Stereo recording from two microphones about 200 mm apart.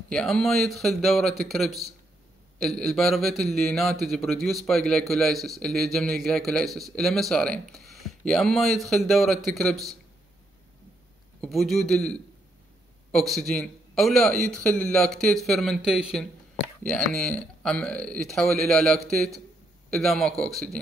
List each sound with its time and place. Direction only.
0.1 s a man's voice: 5° left (ahead or behind)
11.4 s a man's voice: centre (ahead or behind)